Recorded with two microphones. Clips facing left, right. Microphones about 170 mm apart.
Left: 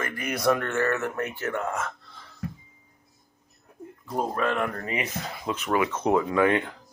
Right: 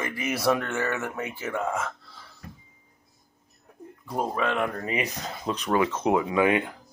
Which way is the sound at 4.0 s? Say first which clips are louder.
Even; centre (ahead or behind).